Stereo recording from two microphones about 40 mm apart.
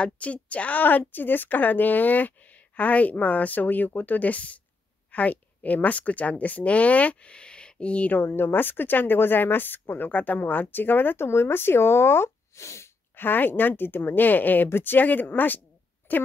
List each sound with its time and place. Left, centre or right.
0.0 s a woman's voice: left
8.2 s speech: left
13.1 s a woman's voice: left
16.0 s a woman's voice: left